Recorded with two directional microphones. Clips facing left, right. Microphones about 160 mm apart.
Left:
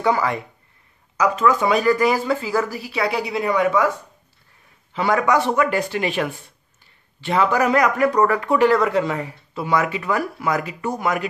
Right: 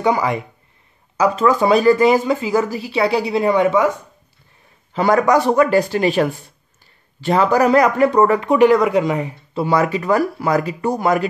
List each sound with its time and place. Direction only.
0.0 s speech: 15° right (ahead or behind)
1.1 s speech: 30° right (ahead or behind)
4.9 s speech: 40° right (ahead or behind); by 9.3 s 15° right (ahead or behind)
9.5 s speech: 30° right (ahead or behind)